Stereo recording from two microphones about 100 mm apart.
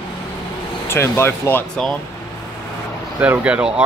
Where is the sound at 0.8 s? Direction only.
25° left (ahead or behind).